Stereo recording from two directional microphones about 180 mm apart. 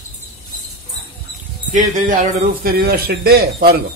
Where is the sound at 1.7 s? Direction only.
45° right (ahead or behind).